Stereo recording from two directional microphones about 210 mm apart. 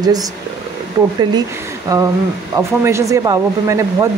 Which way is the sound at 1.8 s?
15° right (ahead or behind).